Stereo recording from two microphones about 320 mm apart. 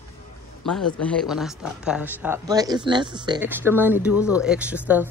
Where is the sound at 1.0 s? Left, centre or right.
Centre.